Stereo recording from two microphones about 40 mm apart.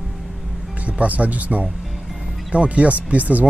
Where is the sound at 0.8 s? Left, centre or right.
Right.